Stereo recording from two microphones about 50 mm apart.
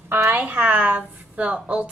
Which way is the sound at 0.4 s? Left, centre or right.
Right.